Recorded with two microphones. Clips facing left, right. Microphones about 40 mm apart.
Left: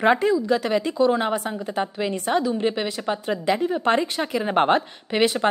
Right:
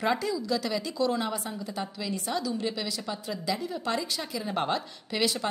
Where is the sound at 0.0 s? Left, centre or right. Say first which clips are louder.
Left 9 dB; left.